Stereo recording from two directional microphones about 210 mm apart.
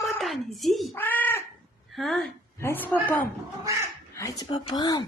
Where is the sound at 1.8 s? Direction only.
Centre (ahead or behind).